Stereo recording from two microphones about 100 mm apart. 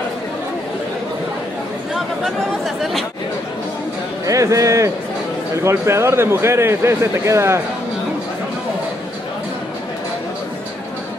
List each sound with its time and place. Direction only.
2.0 s speech: centre (ahead or behind)
4.3 s a man's voice: 35° right (ahead or behind)